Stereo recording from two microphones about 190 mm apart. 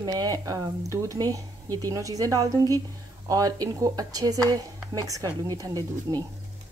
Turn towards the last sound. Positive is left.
turn(degrees=-20)  # may be behind; listen again after turning